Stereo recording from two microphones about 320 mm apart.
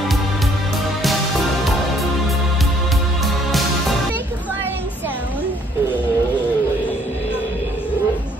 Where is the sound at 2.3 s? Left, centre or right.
Centre.